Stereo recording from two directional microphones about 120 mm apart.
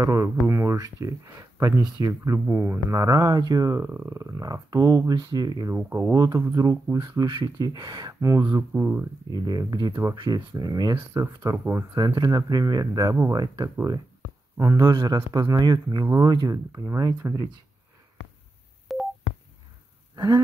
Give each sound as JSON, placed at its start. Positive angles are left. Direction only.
{"t": 0.0, "sound": "speech", "side_deg": -25}
{"t": 2.4, "sound": "speech", "side_deg": -15}
{"t": 3.1, "sound": "speech", "side_deg": -35}
{"t": 5.8, "sound": "speech", "side_deg": -15}
{"t": 6.1, "sound": "speech", "side_deg": -30}
{"t": 11.5, "sound": "speech", "side_deg": -20}
{"t": 11.9, "sound": "speech", "side_deg": -35}
{"t": 18.9, "sound": "telephone dialing", "side_deg": 0}
{"t": 20.2, "sound": "wild animals", "side_deg": -30}